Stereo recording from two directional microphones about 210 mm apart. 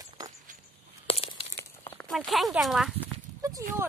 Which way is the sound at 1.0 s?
25° left (ahead or behind).